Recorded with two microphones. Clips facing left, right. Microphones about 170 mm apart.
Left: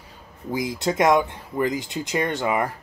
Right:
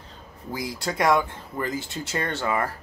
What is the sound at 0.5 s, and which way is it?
Speech, 20° left (ahead or behind).